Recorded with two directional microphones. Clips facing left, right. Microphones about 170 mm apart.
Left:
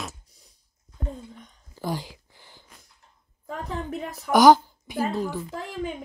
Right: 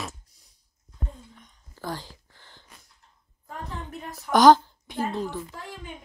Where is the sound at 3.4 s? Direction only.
90° left.